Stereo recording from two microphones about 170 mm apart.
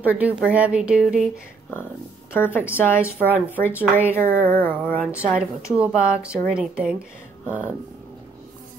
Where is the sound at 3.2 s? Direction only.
10° right (ahead or behind).